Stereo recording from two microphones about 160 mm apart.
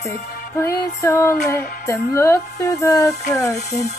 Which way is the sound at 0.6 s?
20° left (ahead or behind).